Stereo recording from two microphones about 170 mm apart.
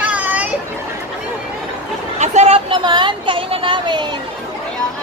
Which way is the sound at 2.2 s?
45° right (ahead or behind).